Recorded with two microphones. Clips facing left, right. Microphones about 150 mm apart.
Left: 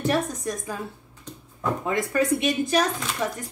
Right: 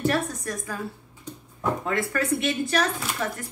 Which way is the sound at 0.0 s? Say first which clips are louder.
Left 1 dB; 20° left (ahead or behind).